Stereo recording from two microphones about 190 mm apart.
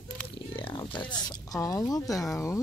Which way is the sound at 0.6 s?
25° left (ahead or behind).